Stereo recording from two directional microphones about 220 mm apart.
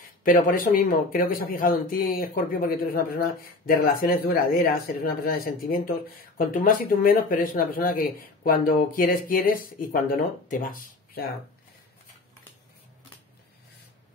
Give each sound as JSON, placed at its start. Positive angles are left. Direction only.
{"t": 0.2, "sound": "speech", "side_deg": 40}